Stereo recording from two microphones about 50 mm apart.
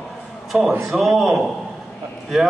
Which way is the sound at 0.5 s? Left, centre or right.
Centre.